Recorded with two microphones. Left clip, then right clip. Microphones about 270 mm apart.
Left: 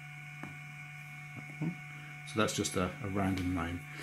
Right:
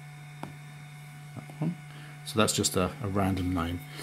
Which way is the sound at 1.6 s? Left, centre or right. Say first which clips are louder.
Right 5 dB; right.